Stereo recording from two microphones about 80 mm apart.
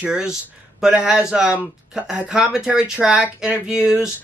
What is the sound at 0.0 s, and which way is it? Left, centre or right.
Speech, centre.